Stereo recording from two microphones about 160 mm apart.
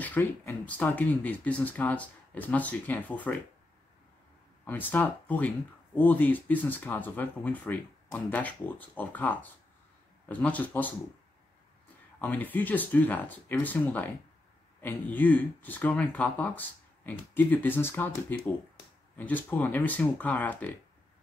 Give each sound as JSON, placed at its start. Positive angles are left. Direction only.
{"t": 0.0, "sound": "speech", "side_deg": 10}
{"t": 4.6, "sound": "speech", "side_deg": 10}
{"t": 12.2, "sound": "speech", "side_deg": 10}